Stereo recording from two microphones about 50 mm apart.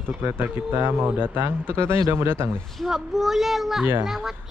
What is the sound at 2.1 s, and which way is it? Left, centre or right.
Speech, right.